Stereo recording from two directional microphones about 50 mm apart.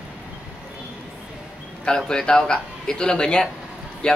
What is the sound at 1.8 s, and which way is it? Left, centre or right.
Speech, centre.